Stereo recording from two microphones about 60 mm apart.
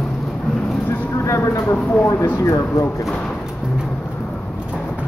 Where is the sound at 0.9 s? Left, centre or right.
Left.